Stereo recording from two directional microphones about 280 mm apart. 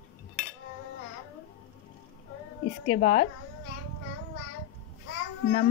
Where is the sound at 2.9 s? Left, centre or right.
Left.